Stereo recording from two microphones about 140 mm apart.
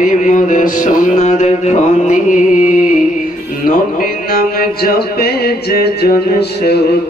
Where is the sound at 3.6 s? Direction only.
85° left.